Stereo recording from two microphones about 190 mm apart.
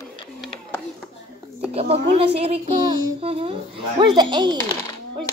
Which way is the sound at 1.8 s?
30° right (ahead or behind).